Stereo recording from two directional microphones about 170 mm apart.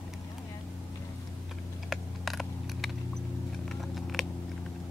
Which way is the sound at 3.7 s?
Centre (ahead or behind).